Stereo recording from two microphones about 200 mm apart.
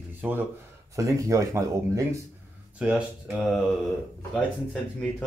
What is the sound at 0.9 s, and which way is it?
Speech, 15° right (ahead or behind).